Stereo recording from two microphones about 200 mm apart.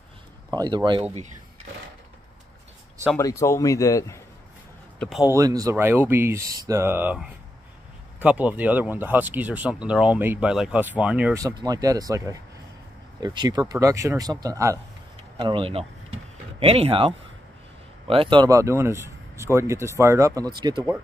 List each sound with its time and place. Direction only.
0.5 s speech: 20° right (ahead or behind)
3.2 s speech: 15° left (ahead or behind)
4.9 s a sound: 5° left (ahead or behind)
5.2 s speech: 15° right (ahead or behind)
11.4 s speech: 20° right (ahead or behind)